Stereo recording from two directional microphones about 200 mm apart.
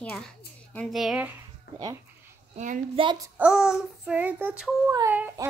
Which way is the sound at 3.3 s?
5° right (ahead or behind).